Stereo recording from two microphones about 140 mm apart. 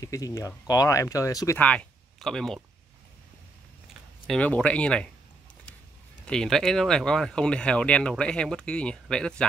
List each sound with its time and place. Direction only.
0.0 s speech: 25° left (ahead or behind)
1.6 s speech: 10° left (ahead or behind)
4.3 s speech: 10° left (ahead or behind)
6.2 s speech: 5° left (ahead or behind)